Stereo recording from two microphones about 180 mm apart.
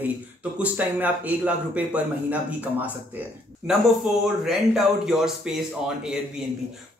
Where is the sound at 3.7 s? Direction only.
5° right (ahead or behind).